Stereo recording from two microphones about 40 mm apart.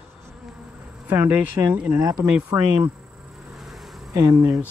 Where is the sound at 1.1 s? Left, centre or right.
Right.